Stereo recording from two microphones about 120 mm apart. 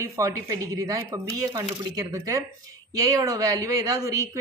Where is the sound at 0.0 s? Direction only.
25° right (ahead or behind).